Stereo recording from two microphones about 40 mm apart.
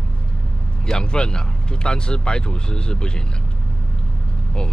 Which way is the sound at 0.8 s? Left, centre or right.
Centre.